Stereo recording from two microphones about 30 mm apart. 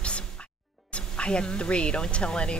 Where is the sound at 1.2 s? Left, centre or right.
Left.